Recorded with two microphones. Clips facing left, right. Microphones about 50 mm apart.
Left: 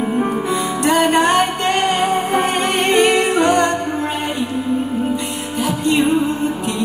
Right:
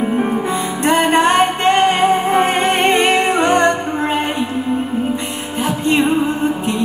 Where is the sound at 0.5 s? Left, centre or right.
Right.